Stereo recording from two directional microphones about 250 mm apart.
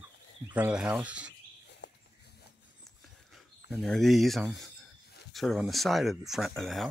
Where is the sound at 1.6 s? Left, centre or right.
Left.